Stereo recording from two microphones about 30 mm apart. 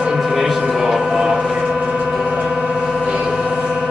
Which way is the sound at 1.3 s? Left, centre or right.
Right.